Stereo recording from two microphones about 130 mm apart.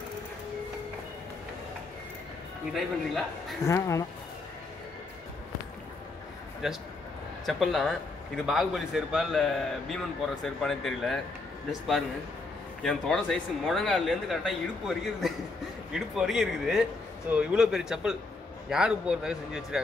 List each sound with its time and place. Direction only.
2.7 s speech: centre (ahead or behind)
3.6 s speech: 25° left (ahead or behind)
6.6 s speech: 5° right (ahead or behind)
12.8 s speech: 5° left (ahead or behind)